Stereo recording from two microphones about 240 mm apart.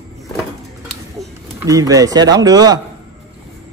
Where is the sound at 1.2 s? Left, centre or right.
Centre.